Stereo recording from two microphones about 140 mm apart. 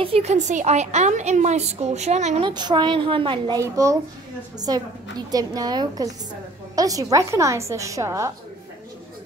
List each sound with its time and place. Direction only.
0.0 s a woman's voice: 45° right (ahead or behind)
2.4 s a woman's voice: 35° right (ahead or behind)
3.5 s a woman's voice: 25° right (ahead or behind)